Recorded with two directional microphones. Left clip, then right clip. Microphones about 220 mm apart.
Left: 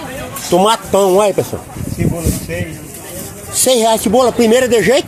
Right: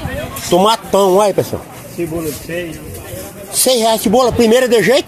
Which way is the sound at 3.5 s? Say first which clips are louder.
Left 1 dB; 15° right (ahead or behind).